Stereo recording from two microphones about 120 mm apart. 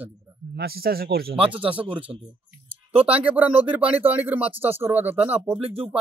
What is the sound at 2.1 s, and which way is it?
Speech, 25° right (ahead or behind).